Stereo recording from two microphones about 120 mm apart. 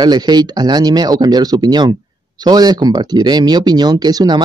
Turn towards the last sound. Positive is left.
turn(degrees=-35)  # may be behind; listen again after turning